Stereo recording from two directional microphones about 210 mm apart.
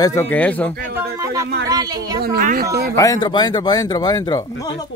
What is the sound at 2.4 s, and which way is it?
Speech, 40° right (ahead or behind).